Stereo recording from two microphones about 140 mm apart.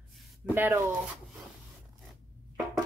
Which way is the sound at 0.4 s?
10° right (ahead or behind).